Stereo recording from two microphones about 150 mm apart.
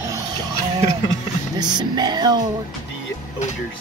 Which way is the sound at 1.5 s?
30° right (ahead or behind).